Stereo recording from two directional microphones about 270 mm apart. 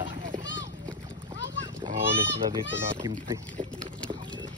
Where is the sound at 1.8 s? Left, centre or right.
Centre.